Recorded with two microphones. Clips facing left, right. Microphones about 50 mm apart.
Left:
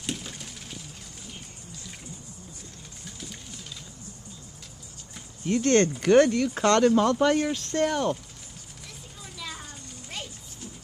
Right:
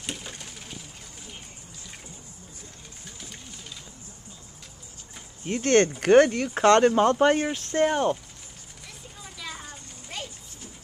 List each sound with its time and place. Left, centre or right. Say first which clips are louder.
0.0 s bird: left 2 dB; centre
5.4 s speech: right 1 dB; right
9.2 s a sound: even; centre